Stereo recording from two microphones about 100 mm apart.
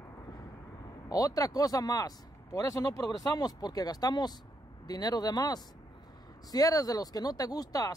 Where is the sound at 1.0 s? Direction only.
35° left (ahead or behind).